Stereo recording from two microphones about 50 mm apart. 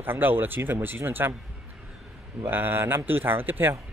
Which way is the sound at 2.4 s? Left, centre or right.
Right.